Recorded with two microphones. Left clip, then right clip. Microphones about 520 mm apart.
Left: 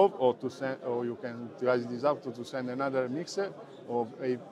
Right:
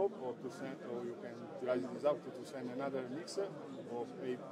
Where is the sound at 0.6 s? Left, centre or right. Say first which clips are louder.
Left 13 dB; left.